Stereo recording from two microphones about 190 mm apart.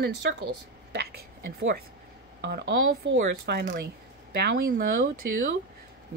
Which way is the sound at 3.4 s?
60° right (ahead or behind).